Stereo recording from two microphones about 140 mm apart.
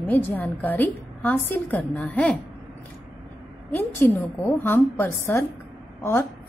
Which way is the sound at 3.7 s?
15° left (ahead or behind).